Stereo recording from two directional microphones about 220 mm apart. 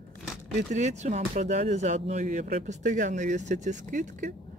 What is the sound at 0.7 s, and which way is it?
Speech, 30° right (ahead or behind).